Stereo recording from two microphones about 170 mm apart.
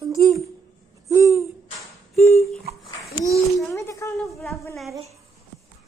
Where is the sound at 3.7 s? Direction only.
20° left (ahead or behind).